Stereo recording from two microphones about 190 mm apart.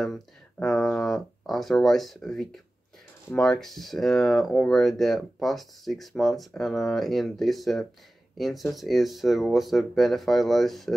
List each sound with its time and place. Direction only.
0.0 s speech: centre (ahead or behind)